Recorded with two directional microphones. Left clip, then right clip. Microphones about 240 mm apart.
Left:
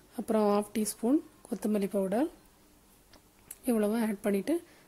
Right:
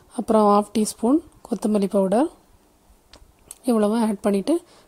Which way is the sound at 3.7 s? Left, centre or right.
Centre.